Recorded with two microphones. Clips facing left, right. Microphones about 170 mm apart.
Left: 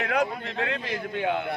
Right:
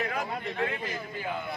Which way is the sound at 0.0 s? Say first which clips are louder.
Left 5 dB; 75° left (ahead or behind).